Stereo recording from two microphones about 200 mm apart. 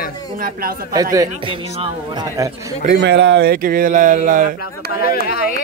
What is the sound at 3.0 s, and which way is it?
Speech, 60° right (ahead or behind).